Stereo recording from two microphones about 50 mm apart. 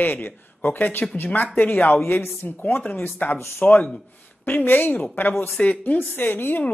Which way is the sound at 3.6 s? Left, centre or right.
Left.